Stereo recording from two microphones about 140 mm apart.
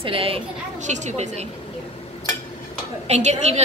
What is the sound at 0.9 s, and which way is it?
Speech, 55° right (ahead or behind).